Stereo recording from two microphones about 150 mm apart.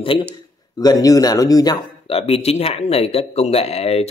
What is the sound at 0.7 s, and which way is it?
Speech, 25° left (ahead or behind).